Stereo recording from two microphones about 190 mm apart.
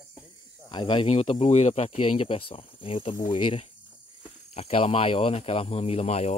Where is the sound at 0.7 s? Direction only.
25° left (ahead or behind).